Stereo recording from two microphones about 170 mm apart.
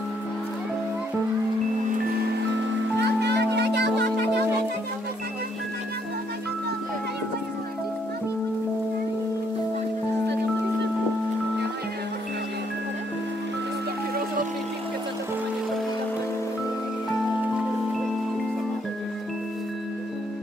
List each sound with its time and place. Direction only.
3.0 s music: 80° right